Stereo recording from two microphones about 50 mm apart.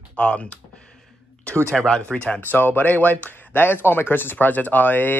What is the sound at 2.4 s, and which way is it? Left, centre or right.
Speech, left.